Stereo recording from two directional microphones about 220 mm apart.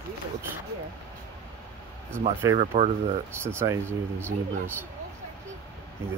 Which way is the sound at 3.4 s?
10° right (ahead or behind).